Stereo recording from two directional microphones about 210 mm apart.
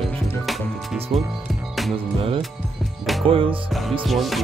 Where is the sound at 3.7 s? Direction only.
Centre (ahead or behind).